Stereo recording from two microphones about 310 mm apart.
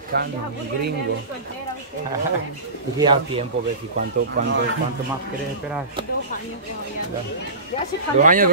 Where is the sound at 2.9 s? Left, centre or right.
Centre.